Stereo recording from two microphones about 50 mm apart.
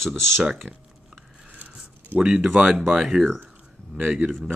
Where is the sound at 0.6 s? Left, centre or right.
Right.